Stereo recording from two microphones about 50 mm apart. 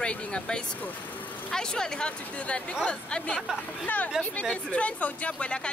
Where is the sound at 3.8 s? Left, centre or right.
Left.